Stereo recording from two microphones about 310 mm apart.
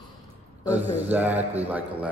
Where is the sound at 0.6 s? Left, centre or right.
Centre.